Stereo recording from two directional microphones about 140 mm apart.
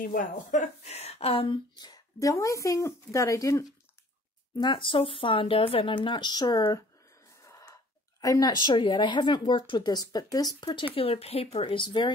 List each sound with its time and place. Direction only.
0.0 s speech: 75° left (ahead or behind); by 1.6 s 40° left (ahead or behind)
1.8 s speech: 25° left (ahead or behind)
4.6 s a woman's voice: 35° left (ahead or behind)
7.4 s wheeze: 20° left (ahead or behind)
8.2 s a woman's voice: 25° left (ahead or behind)
11.0 s a woman's voice: 45° left (ahead or behind)